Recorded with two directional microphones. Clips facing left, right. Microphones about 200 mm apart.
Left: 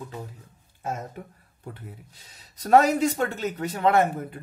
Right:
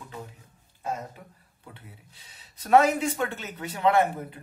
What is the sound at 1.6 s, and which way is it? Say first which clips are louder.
Speech: left 8 dB; 40° left (ahead or behind).